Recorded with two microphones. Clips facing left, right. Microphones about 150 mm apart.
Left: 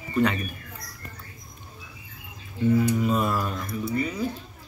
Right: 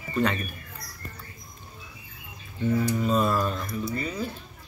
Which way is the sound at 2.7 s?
10° left (ahead or behind).